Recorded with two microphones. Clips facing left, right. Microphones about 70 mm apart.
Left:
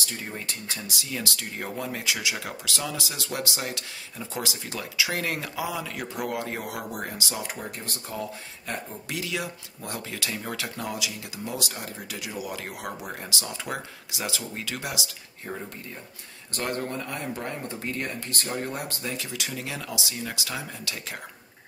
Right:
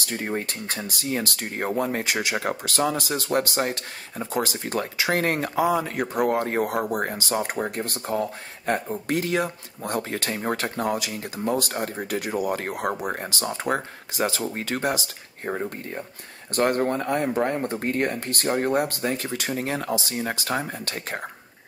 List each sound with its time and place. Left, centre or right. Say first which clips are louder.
0.0 s speech: right 7 dB; right